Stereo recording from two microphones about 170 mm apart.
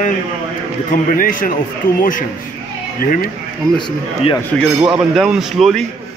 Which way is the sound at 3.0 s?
55° left (ahead or behind).